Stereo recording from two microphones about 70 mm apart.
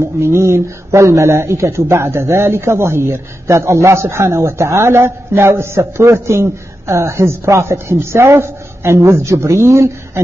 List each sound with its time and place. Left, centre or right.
0.0 s speech: right